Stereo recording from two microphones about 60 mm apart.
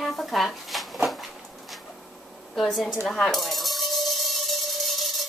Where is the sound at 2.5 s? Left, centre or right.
Centre.